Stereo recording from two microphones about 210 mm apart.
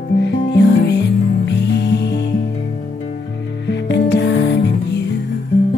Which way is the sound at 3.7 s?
55° left (ahead or behind).